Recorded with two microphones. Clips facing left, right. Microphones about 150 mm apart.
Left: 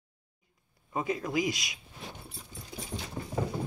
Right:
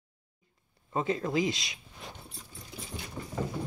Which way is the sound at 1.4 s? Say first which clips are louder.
Right 1 dB; 25° right (ahead or behind).